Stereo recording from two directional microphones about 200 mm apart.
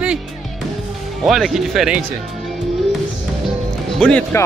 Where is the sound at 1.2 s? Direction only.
Centre (ahead or behind).